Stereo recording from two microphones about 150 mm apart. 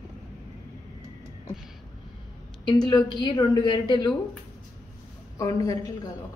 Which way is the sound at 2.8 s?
30° left (ahead or behind).